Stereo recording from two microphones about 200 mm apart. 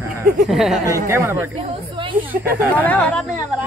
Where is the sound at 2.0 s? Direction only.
25° right (ahead or behind).